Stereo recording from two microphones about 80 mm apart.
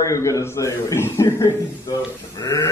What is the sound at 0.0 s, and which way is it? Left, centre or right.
A man's voice, left.